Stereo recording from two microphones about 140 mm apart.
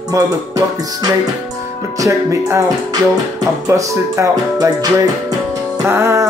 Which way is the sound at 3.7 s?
20° right (ahead or behind).